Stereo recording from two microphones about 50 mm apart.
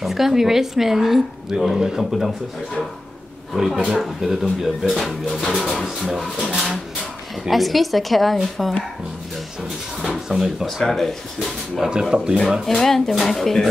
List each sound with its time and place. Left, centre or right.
0.0 s a woman's voice: centre
3.5 s speech: centre
6.5 s a woman's voice: centre
7.4 s speech: centre
10.2 s a woman's voice: centre
10.8 s speech: centre
11.9 s a woman's voice: centre
12.6 s speech: centre